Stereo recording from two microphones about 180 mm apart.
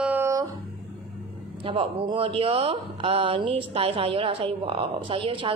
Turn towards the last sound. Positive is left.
turn(degrees=-30)  # may be behind; listen again after turning